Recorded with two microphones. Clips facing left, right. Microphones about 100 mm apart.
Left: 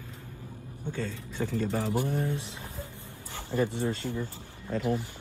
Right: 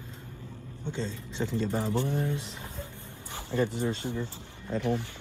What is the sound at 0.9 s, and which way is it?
A man's voice, 20° right (ahead or behind).